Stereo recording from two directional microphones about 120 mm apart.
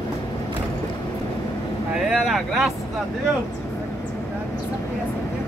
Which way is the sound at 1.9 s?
5° right (ahead or behind).